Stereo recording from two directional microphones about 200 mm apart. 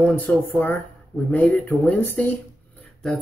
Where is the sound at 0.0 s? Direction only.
5° left (ahead or behind).